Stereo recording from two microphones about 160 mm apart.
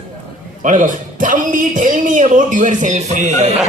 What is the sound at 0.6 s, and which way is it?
A man's voice, 55° right (ahead or behind).